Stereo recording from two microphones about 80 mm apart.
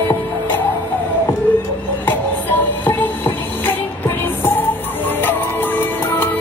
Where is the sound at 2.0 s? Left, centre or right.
Left.